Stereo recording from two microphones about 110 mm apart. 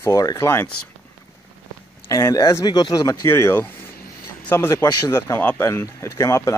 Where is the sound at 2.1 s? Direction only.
30° left (ahead or behind).